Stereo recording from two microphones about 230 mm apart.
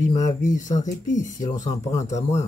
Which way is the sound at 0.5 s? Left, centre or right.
Left.